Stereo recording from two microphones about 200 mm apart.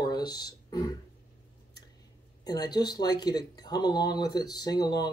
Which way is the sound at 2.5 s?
20° left (ahead or behind).